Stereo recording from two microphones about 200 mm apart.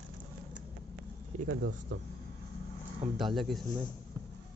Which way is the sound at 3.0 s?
35° right (ahead or behind).